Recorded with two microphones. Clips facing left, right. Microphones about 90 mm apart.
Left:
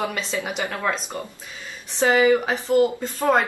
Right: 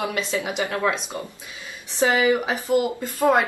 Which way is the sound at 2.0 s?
15° right (ahead or behind).